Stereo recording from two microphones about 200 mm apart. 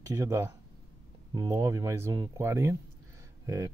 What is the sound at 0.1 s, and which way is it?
Speech, 15° right (ahead or behind).